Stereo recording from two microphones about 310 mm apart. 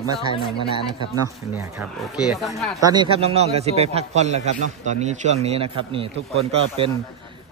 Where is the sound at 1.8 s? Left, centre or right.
Centre.